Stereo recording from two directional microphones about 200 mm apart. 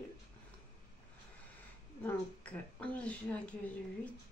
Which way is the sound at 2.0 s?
5° left (ahead or behind).